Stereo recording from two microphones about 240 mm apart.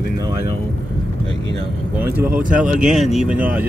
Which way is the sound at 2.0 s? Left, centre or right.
Centre.